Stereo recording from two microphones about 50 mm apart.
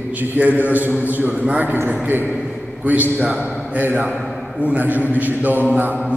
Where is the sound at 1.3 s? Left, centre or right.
Right.